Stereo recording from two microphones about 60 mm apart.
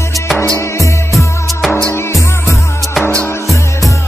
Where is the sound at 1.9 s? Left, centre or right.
Left.